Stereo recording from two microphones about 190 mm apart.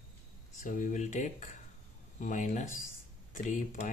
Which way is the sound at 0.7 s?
45° left (ahead or behind).